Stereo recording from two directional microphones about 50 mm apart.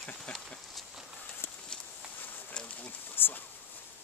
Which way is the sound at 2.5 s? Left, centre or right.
Left.